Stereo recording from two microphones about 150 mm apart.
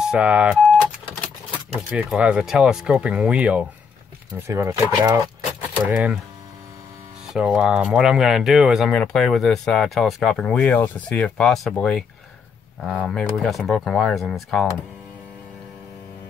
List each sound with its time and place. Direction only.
0.1 s speech: 5° right (ahead or behind)
1.9 s speech: 5° right (ahead or behind)
4.5 s speech: 20° right (ahead or behind)
5.9 s speech: 10° right (ahead or behind)
7.3 s speech: 5° right (ahead or behind)